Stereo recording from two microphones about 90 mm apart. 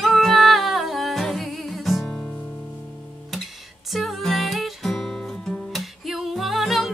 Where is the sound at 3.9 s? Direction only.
Centre (ahead or behind).